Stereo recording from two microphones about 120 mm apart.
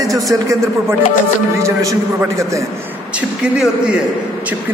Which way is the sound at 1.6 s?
25° right (ahead or behind).